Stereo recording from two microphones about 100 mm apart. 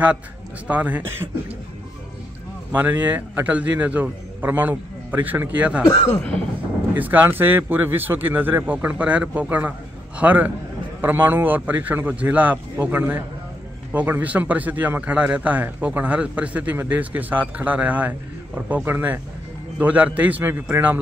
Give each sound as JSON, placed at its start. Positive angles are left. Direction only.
{"t": 0.7, "sound": "a man's voice", "side_deg": -15}
{"t": 2.7, "sound": "a man's voice", "side_deg": -20}
{"t": 5.9, "sound": "speech", "side_deg": 25}
{"t": 7.0, "sound": "a man's voice", "side_deg": -20}